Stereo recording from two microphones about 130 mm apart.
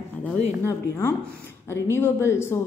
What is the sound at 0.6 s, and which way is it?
Speech, 20° left (ahead or behind).